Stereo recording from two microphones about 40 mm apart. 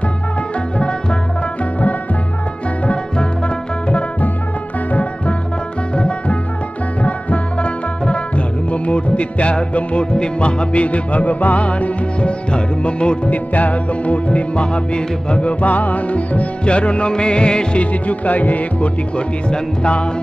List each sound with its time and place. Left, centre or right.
2.9 s music: left
5.9 s music: left
13.3 s music: left
15.6 s music: left
18.0 s music: left